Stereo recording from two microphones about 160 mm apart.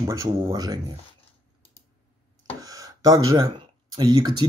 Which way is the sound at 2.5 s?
20° right (ahead or behind).